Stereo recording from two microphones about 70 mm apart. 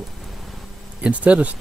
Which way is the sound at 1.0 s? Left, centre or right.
Centre.